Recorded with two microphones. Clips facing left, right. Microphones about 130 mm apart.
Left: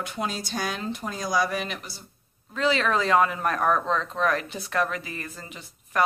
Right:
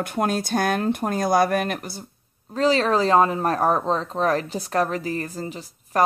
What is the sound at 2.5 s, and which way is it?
Speech, 35° right (ahead or behind).